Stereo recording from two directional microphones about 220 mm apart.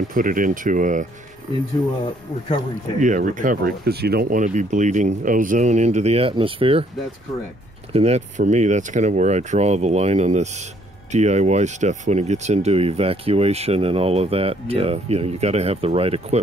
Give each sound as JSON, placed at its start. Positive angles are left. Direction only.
{"t": 0.1, "sound": "speech", "side_deg": -40}
{"t": 3.0, "sound": "speech", "side_deg": -35}
{"t": 7.9, "sound": "speech", "side_deg": -30}